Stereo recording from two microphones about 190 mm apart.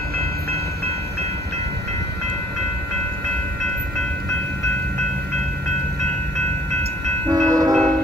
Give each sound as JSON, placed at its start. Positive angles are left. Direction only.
{"t": 7.2, "sound": "train", "side_deg": -20}